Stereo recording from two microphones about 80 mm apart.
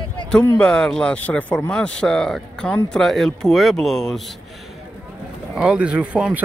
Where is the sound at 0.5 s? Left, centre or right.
Centre.